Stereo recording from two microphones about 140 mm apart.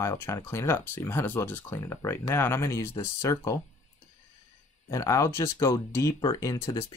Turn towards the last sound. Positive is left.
turn(degrees=25)  # may be behind; listen again after turning